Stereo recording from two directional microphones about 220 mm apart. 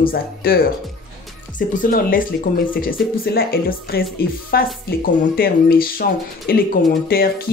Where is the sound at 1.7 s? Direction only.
40° left (ahead or behind).